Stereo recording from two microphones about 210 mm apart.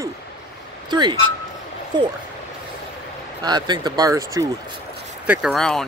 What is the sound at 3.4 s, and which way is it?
Speech, 20° right (ahead or behind).